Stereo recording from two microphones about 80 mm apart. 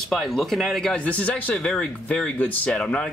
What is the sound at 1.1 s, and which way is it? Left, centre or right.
Speech, centre.